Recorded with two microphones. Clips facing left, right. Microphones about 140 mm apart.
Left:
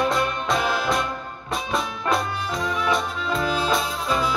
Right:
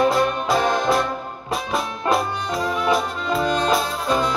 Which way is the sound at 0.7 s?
Centre (ahead or behind).